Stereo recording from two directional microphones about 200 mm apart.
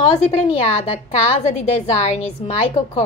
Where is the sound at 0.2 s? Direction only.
35° left (ahead or behind).